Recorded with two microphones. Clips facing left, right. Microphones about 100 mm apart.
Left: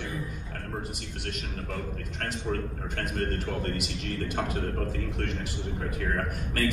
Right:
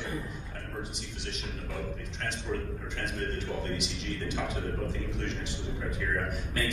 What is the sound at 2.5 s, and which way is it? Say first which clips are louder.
A man's voice: left 2 dB; 55° left (ahead or behind).